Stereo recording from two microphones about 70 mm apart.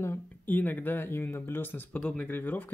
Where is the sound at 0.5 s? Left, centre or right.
Left.